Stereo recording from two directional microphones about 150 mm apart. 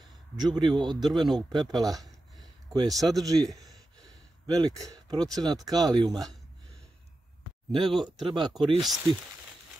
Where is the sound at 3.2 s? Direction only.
25° right (ahead or behind).